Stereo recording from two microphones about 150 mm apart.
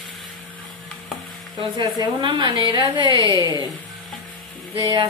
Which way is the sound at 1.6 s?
30° right (ahead or behind).